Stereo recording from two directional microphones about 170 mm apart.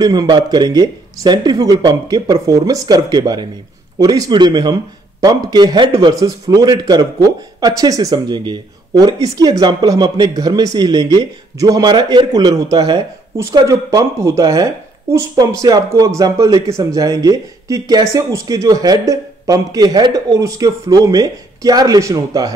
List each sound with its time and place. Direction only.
0.0 s speech: 25° right (ahead or behind)